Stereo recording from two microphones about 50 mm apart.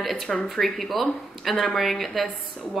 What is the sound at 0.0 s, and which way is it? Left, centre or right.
A woman's voice, centre.